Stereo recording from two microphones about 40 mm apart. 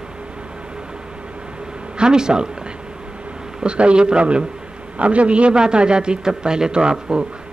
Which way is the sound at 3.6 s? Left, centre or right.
Right.